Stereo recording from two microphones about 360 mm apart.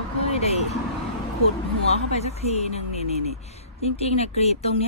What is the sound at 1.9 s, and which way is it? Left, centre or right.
Speech, centre.